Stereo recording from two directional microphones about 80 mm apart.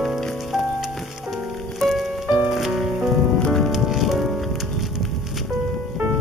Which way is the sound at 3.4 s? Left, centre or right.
Centre.